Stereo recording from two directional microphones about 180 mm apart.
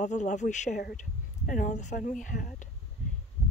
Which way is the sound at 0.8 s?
55° left (ahead or behind).